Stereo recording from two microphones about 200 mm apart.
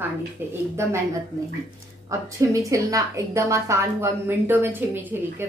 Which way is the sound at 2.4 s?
15° right (ahead or behind).